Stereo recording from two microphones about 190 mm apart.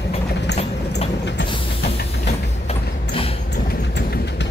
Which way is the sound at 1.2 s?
65° left (ahead or behind).